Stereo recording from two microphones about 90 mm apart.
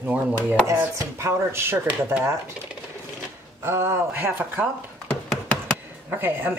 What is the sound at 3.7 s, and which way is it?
Speech, 30° right (ahead or behind).